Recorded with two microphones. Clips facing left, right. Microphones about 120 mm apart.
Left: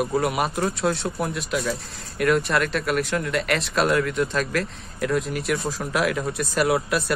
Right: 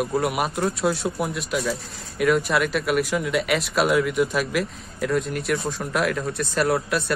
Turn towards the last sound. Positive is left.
turn(degrees=0)  # may be behind; listen again after turning